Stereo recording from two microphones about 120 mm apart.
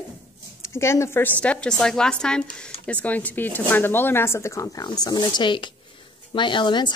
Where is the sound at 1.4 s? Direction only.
10° left (ahead or behind).